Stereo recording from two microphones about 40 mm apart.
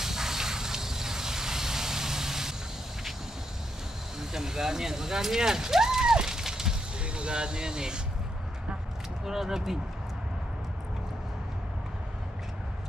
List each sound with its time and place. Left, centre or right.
0.0 s a sound: centre
4.2 s speech: centre
7.0 s speech: right
9.2 s speech: centre